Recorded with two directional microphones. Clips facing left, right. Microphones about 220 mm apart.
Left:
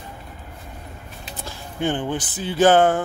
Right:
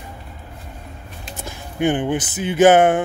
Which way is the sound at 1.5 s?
15° right (ahead or behind).